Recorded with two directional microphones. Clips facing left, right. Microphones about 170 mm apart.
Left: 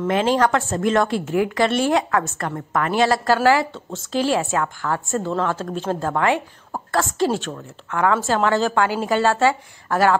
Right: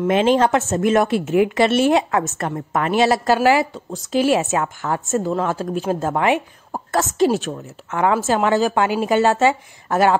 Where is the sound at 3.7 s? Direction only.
Centre (ahead or behind).